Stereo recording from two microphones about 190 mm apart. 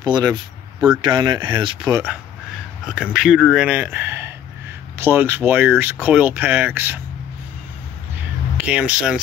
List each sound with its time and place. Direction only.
0.0 s speech: 20° right (ahead or behind)
2.9 s speech: 5° right (ahead or behind)
8.5 s speech: 5° right (ahead or behind)